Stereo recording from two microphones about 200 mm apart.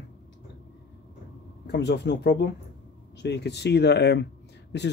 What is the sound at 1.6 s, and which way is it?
Speech, 60° left (ahead or behind).